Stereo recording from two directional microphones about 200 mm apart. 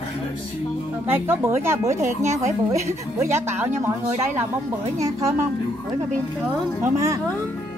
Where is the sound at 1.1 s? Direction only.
10° right (ahead or behind).